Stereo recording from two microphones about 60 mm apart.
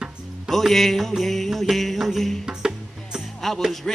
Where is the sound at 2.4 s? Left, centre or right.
Centre.